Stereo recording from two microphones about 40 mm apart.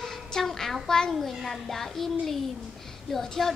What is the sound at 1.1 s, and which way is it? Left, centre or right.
A child's voice, centre.